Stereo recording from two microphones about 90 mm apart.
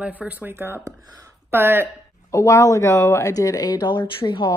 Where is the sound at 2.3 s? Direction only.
35° left (ahead or behind); by 4.5 s 60° left (ahead or behind).